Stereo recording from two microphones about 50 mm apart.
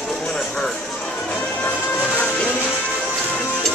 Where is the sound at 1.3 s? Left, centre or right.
Left.